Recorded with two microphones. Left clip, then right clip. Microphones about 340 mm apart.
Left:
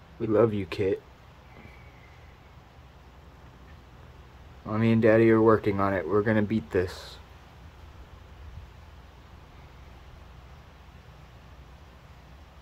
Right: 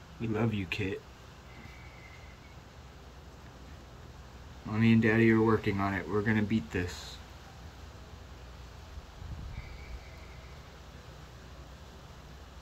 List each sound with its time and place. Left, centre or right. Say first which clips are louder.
0.3 s speech: left 10 dB; centre
4.6 s speech: left 6 dB; centre